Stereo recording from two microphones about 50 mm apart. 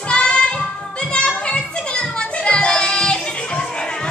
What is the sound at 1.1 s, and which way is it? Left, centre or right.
Children playing, left.